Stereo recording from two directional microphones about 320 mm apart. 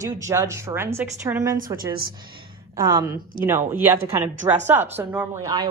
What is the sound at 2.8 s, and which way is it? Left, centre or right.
A woman's voice, centre.